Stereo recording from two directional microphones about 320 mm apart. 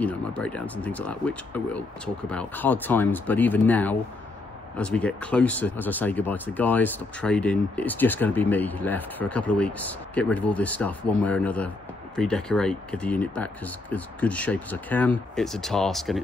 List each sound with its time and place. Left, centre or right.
0.0 s speech: centre